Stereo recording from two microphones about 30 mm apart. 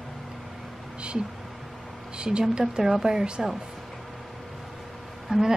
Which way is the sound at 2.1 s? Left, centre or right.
Right.